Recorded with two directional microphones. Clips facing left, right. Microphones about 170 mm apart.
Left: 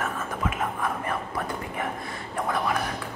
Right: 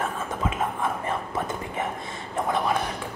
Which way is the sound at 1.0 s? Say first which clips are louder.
Right 2 dB; 25° right (ahead or behind).